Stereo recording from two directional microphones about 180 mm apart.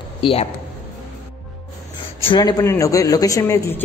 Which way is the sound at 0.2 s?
30° left (ahead or behind).